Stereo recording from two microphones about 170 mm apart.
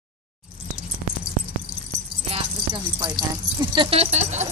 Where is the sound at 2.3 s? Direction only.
25° right (ahead or behind).